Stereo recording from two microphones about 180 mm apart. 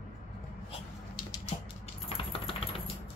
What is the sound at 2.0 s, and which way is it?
Typing, 30° left (ahead or behind).